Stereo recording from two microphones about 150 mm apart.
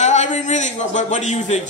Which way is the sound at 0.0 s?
50° left (ahead or behind).